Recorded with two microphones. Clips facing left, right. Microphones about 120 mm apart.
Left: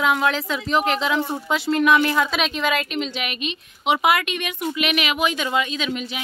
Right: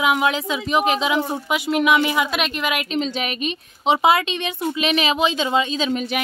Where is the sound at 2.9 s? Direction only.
35° right (ahead or behind).